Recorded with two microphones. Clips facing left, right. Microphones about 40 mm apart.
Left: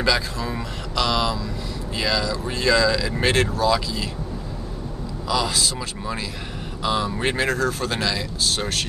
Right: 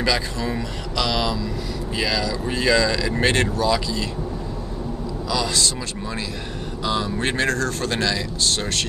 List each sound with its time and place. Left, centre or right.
0.0 s speech: centre
0.6 s mantra: centre
2.0 s speech: centre
5.3 s speech: centre